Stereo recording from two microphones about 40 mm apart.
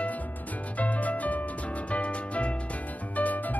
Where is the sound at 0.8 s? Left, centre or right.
Left.